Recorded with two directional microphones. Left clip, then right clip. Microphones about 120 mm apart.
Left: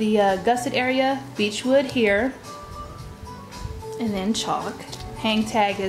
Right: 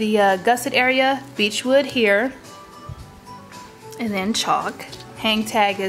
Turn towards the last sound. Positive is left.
turn(degrees=-35)  # may be behind; listen again after turning